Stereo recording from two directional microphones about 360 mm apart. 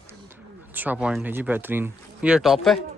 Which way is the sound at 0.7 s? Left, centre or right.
Centre.